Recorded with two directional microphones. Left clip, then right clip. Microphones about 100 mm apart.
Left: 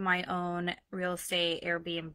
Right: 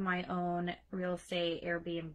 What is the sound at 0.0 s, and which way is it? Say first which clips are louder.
Speech: left 5 dB; 25° left (ahead or behind).